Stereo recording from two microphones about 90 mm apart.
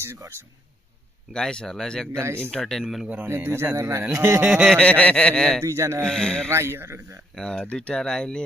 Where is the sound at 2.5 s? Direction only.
5° left (ahead or behind).